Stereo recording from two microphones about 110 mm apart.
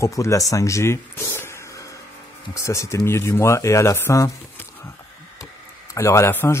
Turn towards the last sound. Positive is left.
turn(degrees=20)  # may be behind; listen again after turning